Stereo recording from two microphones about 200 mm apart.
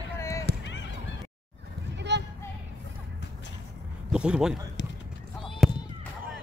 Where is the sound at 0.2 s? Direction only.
15° left (ahead or behind).